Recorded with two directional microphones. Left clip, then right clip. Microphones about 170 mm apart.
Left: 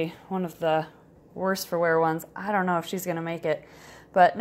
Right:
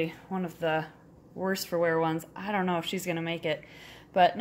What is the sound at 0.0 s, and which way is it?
Speech, 30° left (ahead or behind).